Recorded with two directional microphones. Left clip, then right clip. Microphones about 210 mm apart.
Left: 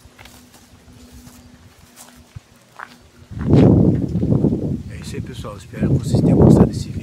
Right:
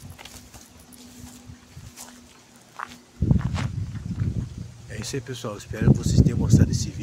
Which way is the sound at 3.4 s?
5° right (ahead or behind).